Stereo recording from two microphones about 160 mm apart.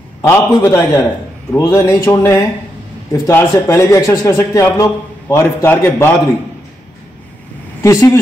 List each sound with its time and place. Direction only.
0.2 s speech: 15° left (ahead or behind)
7.8 s speech: 20° left (ahead or behind)